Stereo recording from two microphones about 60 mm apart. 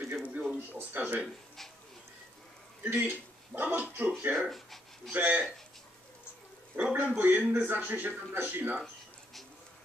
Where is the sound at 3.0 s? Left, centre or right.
Right.